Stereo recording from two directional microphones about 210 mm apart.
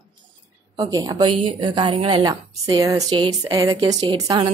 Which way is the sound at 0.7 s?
20° right (ahead or behind).